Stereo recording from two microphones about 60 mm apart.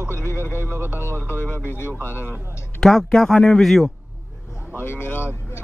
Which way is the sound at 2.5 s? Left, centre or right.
Left.